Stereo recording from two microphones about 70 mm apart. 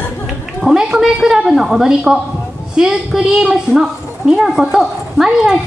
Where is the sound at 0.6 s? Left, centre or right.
Centre.